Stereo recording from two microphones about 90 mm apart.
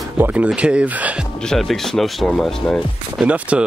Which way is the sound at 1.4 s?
5° left (ahead or behind).